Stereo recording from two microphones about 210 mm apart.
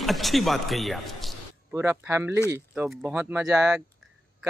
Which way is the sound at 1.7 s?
10° right (ahead or behind).